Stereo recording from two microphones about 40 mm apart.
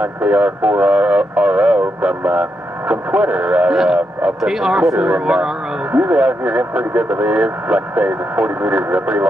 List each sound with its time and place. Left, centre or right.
0.0 s speech: right
3.7 s speech: centre
4.9 s speech: right
5.9 s speech: right